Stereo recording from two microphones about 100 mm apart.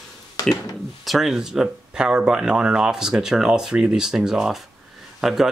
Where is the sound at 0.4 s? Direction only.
40° left (ahead or behind).